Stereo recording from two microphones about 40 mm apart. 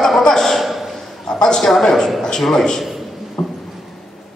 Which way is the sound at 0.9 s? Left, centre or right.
Centre.